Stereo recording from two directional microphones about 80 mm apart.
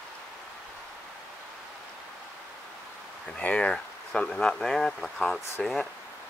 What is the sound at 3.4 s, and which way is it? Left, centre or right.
Speech, centre.